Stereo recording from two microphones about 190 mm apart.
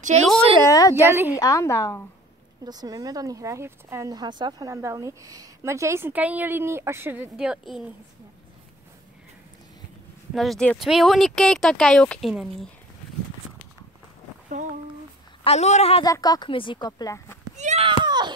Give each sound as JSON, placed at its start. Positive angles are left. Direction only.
{"t": 0.7, "sound": "a woman's voice", "side_deg": 20}
{"t": 0.9, "sound": "speech", "side_deg": -10}
{"t": 1.4, "sound": "a woman's voice", "side_deg": 15}
{"t": 2.6, "sound": "speech", "side_deg": -20}
{"t": 10.3, "sound": "speech", "side_deg": 0}
{"t": 14.5, "sound": "speech", "side_deg": -40}
{"t": 15.4, "sound": "a man's voice", "side_deg": 35}
{"t": 16.0, "sound": "a woman's voice", "side_deg": 20}
{"t": 17.6, "sound": "a sound", "side_deg": -40}
{"t": 17.8, "sound": "a sound", "side_deg": -25}